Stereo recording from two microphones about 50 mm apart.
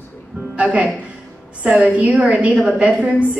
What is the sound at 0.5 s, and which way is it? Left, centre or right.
A woman's voice, right.